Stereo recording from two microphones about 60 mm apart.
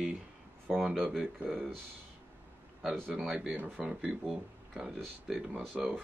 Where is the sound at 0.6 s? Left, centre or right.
Centre.